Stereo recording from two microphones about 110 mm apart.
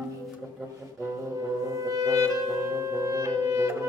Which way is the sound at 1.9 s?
35° right (ahead or behind).